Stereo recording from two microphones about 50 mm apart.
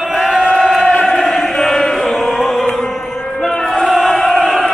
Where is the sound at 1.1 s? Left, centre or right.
Centre.